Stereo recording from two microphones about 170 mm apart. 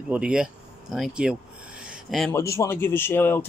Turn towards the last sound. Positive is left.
turn(degrees=10)  # may be behind; listen again after turning